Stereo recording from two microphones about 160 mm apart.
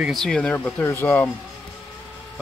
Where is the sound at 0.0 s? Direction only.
Centre (ahead or behind).